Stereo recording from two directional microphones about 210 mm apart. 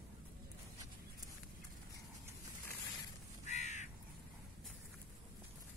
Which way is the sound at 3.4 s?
35° left (ahead or behind).